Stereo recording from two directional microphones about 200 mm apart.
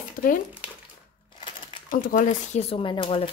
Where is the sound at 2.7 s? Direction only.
25° left (ahead or behind).